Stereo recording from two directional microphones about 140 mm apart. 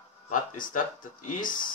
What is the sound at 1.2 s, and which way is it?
Speech, 75° left (ahead or behind).